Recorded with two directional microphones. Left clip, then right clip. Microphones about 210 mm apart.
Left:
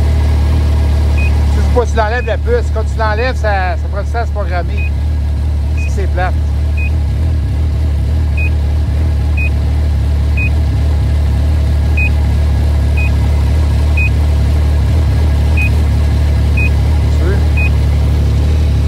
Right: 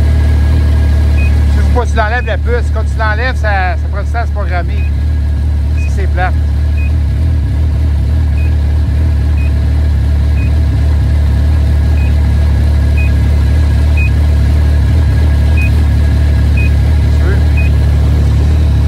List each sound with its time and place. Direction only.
1.1 s vehicle: centre (ahead or behind)
1.8 s speech: 20° left (ahead or behind)
5.9 s speech: 20° left (ahead or behind)
12.9 s vehicle: centre (ahead or behind)
14.9 s vehicle: centre (ahead or behind)